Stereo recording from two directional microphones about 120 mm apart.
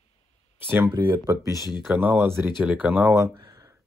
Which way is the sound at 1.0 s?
25° right (ahead or behind).